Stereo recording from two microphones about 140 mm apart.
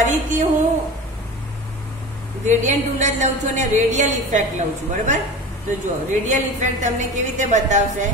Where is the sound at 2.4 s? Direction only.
60° right (ahead or behind).